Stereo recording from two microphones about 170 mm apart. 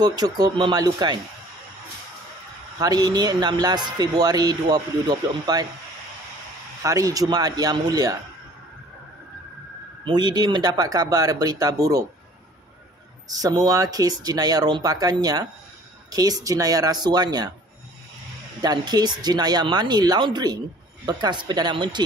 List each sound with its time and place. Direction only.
0.0 s speech: 25° right (ahead or behind)
2.8 s speech: 25° right (ahead or behind)
6.8 s speech: 20° right (ahead or behind)
10.0 s speech: 25° right (ahead or behind)
13.3 s speech: 20° right (ahead or behind)
18.6 s speech: 25° right (ahead or behind)